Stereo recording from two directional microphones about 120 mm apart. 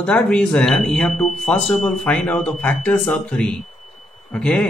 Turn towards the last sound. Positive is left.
turn(degrees=10)  # may be behind; listen again after turning